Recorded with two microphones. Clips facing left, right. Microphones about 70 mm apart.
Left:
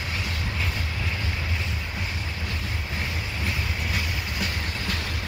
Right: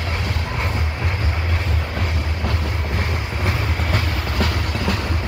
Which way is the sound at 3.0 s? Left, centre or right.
Right.